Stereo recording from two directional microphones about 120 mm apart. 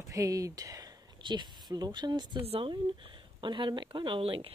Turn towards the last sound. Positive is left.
turn(degrees=-50)  # may be behind; listen again after turning